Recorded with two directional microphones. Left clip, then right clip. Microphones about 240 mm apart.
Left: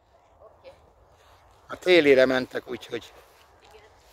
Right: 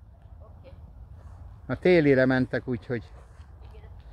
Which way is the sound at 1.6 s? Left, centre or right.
Centre.